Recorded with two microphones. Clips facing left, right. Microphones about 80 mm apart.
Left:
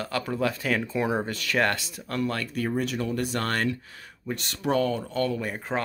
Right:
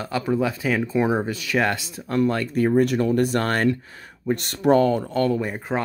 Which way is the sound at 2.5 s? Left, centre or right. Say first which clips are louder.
Right 9 dB; right.